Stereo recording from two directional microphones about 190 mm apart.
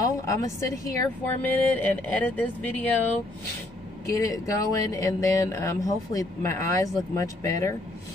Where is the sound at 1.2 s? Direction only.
10° left (ahead or behind).